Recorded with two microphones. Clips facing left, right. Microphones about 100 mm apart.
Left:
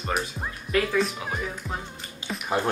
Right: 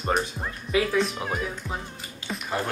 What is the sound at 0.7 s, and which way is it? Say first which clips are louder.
Speech: even; 10° right (ahead or behind).